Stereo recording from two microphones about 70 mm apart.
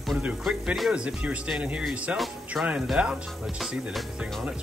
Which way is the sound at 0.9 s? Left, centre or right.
Centre.